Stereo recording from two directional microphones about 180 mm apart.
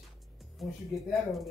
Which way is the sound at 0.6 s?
Centre (ahead or behind).